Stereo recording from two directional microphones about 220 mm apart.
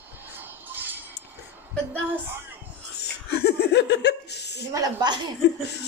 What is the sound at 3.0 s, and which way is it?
Speech, 45° left (ahead or behind).